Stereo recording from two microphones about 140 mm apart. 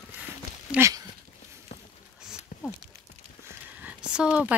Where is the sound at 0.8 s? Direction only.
25° right (ahead or behind).